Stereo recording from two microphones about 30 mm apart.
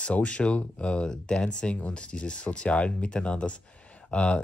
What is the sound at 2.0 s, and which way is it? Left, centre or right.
Speech, left.